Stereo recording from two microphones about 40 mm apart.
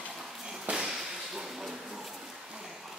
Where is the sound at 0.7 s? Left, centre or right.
Centre.